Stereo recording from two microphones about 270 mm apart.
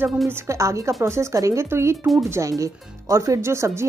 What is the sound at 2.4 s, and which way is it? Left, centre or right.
Speech, centre.